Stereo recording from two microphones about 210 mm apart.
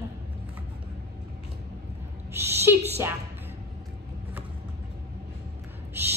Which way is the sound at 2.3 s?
10° right (ahead or behind).